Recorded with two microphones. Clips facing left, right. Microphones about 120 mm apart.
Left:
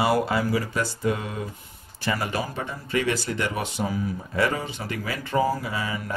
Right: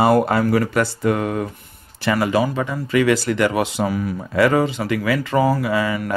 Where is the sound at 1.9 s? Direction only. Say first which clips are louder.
Right 9 dB; 85° right.